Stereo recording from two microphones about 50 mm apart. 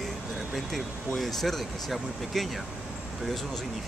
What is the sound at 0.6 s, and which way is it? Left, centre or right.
Speech, centre.